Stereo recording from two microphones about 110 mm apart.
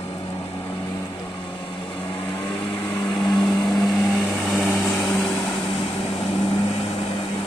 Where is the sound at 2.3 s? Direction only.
50° left (ahead or behind).